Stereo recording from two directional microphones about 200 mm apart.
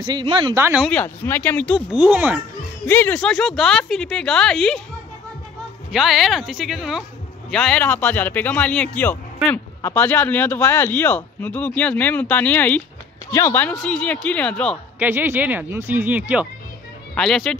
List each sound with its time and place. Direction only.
0.0 s speech: 25° right (ahead or behind)
0.7 s speech: 5° left (ahead or behind)
1.9 s speech: 5° right (ahead or behind)
2.9 s speech: 10° left (ahead or behind)
5.9 s speech: centre (ahead or behind)
15.0 s speech: 10° right (ahead or behind)